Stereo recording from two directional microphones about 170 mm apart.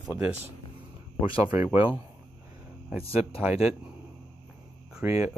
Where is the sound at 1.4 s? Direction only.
15° right (ahead or behind).